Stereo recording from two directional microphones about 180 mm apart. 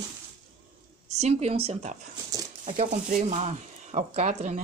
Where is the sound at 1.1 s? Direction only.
35° right (ahead or behind).